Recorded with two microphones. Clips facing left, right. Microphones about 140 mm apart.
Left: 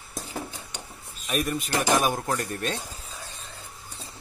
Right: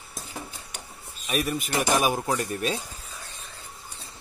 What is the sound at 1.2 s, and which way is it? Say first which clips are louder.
Speech: even; 5° right (ahead or behind).